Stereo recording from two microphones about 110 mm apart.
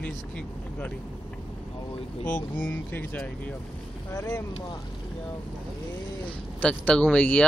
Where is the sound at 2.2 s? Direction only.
15° left (ahead or behind).